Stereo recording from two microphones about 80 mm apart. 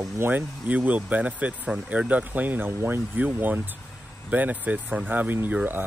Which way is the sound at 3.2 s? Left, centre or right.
Right.